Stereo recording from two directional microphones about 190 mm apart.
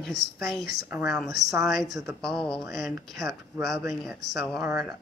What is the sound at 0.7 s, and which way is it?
Speech, 10° right (ahead or behind).